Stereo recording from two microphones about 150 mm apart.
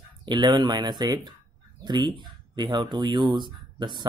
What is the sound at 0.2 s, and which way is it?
Speech, 30° right (ahead or behind).